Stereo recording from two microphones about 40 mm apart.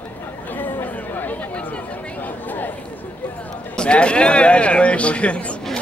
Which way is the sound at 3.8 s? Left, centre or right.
Left.